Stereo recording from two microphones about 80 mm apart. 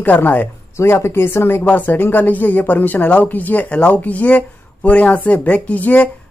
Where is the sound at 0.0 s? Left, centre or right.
Left.